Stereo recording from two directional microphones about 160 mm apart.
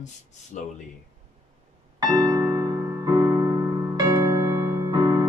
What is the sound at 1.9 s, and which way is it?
Music, 25° right (ahead or behind).